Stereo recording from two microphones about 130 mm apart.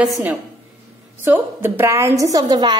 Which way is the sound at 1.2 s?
15° right (ahead or behind).